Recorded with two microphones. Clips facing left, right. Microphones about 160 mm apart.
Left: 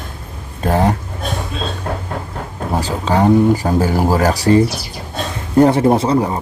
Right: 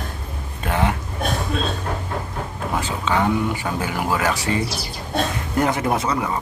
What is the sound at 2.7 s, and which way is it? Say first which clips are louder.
Speech: left 5 dB; 35° left (ahead or behind).